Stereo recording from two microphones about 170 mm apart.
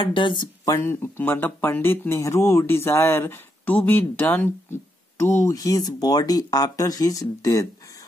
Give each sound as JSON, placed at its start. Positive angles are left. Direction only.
{"t": 0.0, "sound": "speech", "side_deg": 30}
{"t": 0.7, "sound": "speech", "side_deg": 15}